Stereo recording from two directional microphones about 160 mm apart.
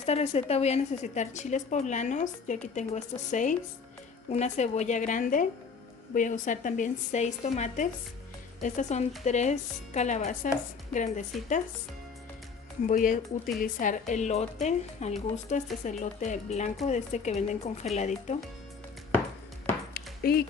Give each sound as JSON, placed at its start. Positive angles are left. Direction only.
{"t": 0.0, "sound": "a woman's voice", "side_deg": 40}
{"t": 12.8, "sound": "a woman's voice", "side_deg": 55}
{"t": 19.9, "sound": "a sound", "side_deg": 75}